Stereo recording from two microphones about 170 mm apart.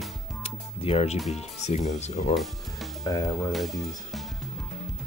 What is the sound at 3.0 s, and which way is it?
Speech, 20° left (ahead or behind).